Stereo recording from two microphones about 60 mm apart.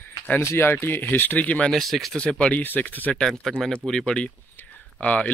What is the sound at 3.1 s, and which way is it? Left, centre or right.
Speech, centre.